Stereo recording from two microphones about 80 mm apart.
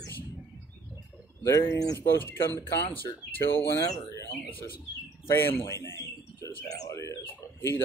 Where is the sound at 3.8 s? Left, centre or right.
Left.